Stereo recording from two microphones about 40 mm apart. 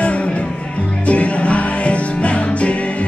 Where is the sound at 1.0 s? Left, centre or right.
Left.